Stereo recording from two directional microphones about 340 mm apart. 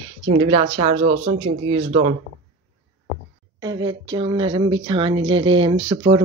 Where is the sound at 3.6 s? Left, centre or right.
Centre.